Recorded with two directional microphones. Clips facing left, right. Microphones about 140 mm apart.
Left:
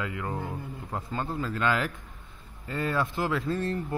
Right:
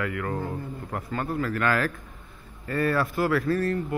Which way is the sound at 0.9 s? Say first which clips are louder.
Right 3 dB; 20° left (ahead or behind).